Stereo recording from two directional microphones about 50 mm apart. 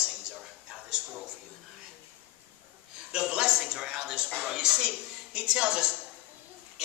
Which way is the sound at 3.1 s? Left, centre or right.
Centre.